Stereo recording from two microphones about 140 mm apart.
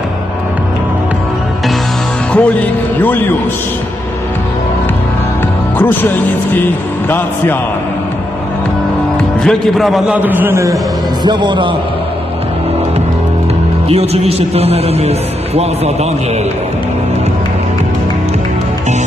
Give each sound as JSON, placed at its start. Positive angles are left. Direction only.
{"t": 2.3, "sound": "a man's voice", "side_deg": 10}
{"t": 5.8, "sound": "speech", "side_deg": 15}
{"t": 9.4, "sound": "a man's voice", "side_deg": 0}
{"t": 11.2, "sound": "a man's voice", "side_deg": -35}
{"t": 13.8, "sound": "a man's voice", "side_deg": -45}